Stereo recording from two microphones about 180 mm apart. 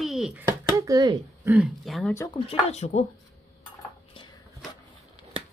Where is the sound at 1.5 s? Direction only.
5° right (ahead or behind).